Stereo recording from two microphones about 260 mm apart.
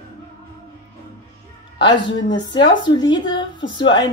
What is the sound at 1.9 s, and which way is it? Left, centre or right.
Speech, left.